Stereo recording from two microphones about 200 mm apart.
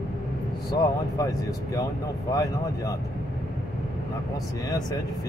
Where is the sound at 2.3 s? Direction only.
20° left (ahead or behind).